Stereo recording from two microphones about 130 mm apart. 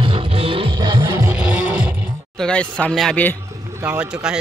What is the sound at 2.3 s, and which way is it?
Speech, 5° left (ahead or behind).